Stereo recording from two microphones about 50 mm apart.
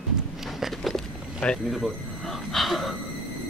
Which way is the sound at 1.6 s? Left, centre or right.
Centre.